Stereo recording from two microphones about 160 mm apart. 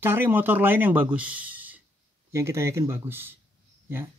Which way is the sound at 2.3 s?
15° right (ahead or behind).